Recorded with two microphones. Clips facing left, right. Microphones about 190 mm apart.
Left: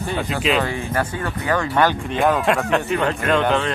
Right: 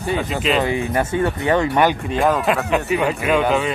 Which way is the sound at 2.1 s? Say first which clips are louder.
Even; centre (ahead or behind).